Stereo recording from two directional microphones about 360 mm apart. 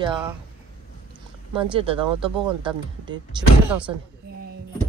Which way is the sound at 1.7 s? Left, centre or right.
Centre.